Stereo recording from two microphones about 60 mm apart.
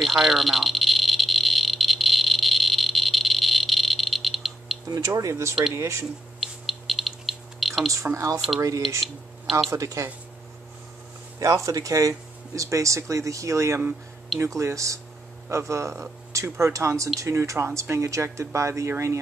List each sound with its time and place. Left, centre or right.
0.0 s frog: centre
4.8 s speech: right
6.4 s a sound: centre
7.9 s speech: right
8.5 s speech: right
9.0 s speech: centre
9.7 s speech: right
11.3 s speech: right